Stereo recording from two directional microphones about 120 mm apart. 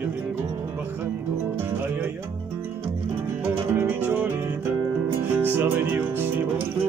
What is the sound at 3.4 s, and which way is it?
Music, 15° right (ahead or behind).